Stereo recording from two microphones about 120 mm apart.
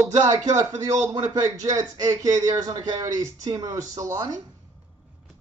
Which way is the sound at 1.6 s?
30° right (ahead or behind).